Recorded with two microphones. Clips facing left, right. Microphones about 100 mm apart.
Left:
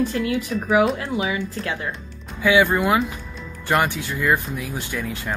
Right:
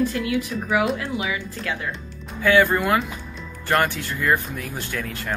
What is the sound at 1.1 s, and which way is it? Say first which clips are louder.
Speech: left 3 dB; 30° left (ahead or behind).